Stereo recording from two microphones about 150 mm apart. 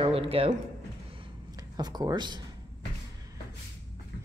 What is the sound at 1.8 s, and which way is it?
Speech, 25° right (ahead or behind).